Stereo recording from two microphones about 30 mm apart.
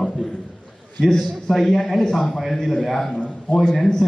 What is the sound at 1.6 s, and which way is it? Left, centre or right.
Speech, centre.